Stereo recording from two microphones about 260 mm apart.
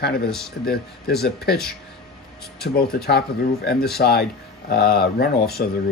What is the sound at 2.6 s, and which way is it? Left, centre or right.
Speech, left.